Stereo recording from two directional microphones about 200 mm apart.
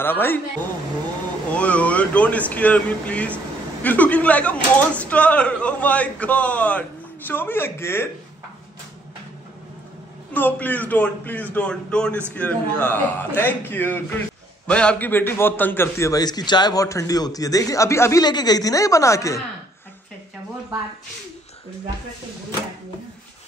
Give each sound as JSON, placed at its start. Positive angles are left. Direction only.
{"t": 0.0, "sound": "a man's voice", "side_deg": 10}
{"t": 1.5, "sound": "a man's voice", "side_deg": 5}
{"t": 10.3, "sound": "a man's voice", "side_deg": 10}